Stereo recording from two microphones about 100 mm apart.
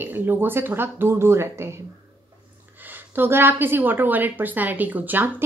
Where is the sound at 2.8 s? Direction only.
20° right (ahead or behind).